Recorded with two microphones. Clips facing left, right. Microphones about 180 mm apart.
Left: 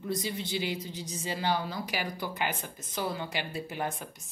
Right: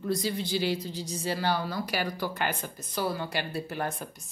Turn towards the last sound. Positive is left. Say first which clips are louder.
# right 2 dB
turn(degrees=15)  # may be behind; listen again after turning